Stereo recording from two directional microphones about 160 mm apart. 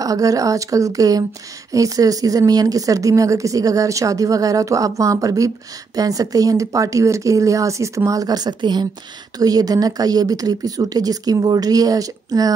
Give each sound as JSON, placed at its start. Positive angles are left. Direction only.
{"t": 0.0, "sound": "speech", "side_deg": -20}